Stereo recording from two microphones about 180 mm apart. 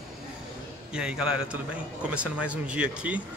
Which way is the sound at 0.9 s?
5° right (ahead or behind).